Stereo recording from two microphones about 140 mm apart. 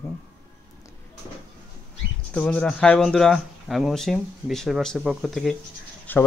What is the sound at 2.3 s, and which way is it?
Speech, 5° left (ahead or behind).